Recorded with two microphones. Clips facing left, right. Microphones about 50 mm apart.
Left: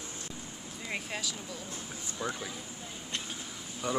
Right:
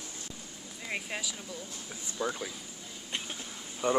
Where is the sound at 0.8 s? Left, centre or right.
Centre.